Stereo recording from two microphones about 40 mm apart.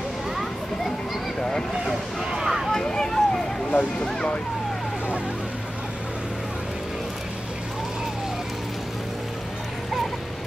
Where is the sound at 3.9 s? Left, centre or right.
Left.